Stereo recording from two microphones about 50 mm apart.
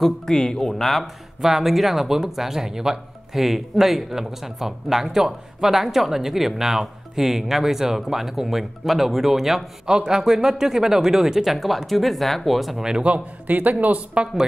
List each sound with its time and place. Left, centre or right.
0.0 s speech: centre
13.0 s a man's voice: right